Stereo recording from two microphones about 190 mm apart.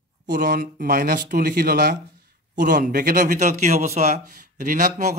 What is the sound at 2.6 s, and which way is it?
Speech, 45° right (ahead or behind).